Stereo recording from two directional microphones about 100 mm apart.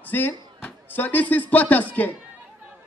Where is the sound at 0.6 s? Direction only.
15° left (ahead or behind).